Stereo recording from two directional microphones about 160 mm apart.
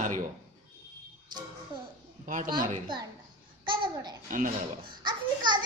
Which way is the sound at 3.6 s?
30° right (ahead or behind).